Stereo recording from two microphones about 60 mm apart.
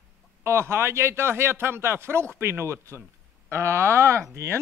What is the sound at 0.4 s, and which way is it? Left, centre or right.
Speech, right.